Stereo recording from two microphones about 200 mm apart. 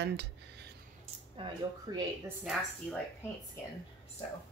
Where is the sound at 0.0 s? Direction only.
55° right (ahead or behind).